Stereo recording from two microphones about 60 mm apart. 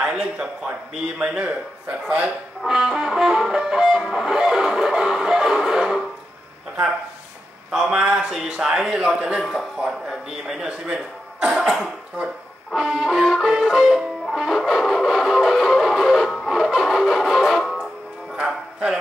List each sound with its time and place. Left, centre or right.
0.0 s music: centre
2.6 s music: centre
7.7 s music: centre
9.4 s music: centre
10.6 s speech: centre
12.7 s music: centre
18.3 s music: centre